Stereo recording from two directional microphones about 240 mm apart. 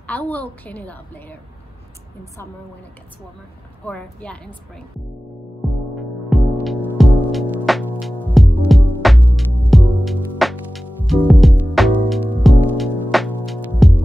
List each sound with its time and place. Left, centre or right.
0.0 s a woman's voice: centre
3.8 s a woman's voice: centre
5.6 s music: centre